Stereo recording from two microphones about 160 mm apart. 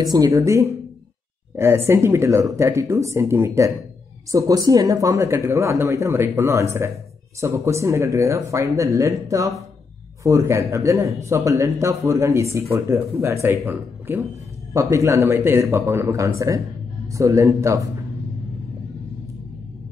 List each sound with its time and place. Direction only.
0.0 s speech: 25° right (ahead or behind)
1.9 s speech: 15° right (ahead or behind)